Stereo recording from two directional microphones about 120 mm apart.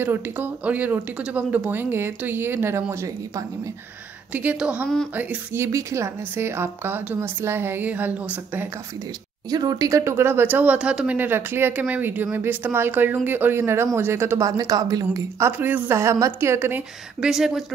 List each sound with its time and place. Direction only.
0.0 s a woman's voice: 15° right (ahead or behind)
9.5 s a woman's voice: 30° right (ahead or behind)
17.2 s speech: 5° right (ahead or behind)